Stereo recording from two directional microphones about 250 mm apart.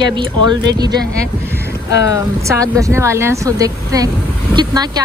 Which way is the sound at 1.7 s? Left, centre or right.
Left.